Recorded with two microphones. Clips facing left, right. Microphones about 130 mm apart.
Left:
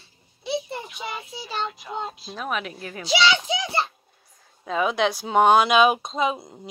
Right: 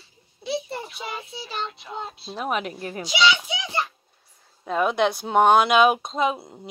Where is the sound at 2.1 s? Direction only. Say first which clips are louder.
Right 2 dB; 30° right (ahead or behind).